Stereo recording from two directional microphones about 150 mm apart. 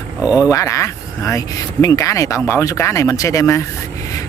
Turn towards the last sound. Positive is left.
turn(degrees=20)  # may be behind; listen again after turning